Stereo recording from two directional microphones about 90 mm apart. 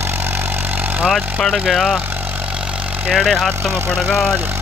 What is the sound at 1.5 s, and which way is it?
Speech, centre (ahead or behind).